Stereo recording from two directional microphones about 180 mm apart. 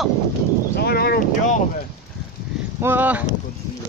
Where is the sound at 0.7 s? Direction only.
60° left (ahead or behind).